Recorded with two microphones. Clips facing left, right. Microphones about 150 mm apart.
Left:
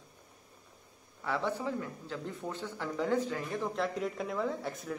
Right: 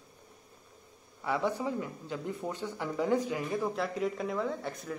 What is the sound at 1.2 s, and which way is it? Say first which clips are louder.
Speech: right 2 dB; 15° right (ahead or behind).